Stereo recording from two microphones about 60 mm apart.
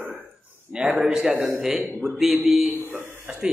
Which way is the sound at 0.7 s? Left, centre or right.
Centre.